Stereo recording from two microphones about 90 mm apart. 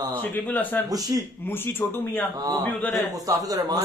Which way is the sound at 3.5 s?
45° right (ahead or behind).